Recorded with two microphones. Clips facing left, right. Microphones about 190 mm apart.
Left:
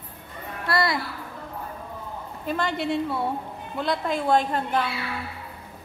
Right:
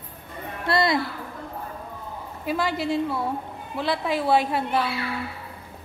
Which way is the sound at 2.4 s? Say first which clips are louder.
Right 1 dB; 5° right (ahead or behind).